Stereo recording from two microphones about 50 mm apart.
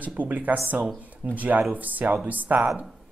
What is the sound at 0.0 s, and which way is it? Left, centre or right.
A woman's voice, right.